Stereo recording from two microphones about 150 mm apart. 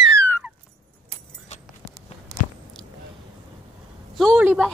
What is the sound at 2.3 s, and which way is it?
Biting, 90° right.